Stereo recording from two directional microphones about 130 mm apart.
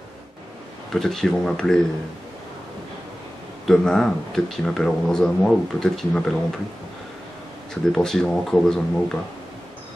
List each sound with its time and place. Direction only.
0.9 s speech: 5° left (ahead or behind)
3.6 s speech: 5° left (ahead or behind)
7.7 s speech: 5° left (ahead or behind)